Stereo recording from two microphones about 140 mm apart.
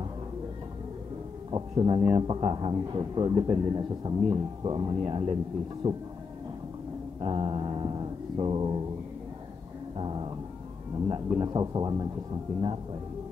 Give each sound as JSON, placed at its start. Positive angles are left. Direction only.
{"t": 1.5, "sound": "a man's voice", "side_deg": -35}
{"t": 7.2, "sound": "a sound", "side_deg": -40}
{"t": 9.9, "sound": "dog", "side_deg": -40}
{"t": 11.1, "sound": "a man's voice", "side_deg": -30}